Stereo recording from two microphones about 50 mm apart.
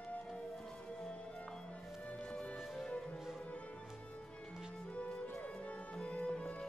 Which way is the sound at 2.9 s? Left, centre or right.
Left.